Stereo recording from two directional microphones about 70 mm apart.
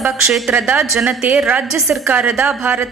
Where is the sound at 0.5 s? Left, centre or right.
Right.